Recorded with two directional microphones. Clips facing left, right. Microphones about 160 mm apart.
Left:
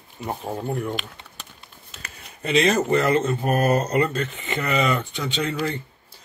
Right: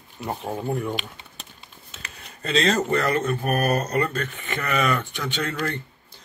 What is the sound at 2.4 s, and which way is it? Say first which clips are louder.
Speech: left 2 dB; 15° left (ahead or behind).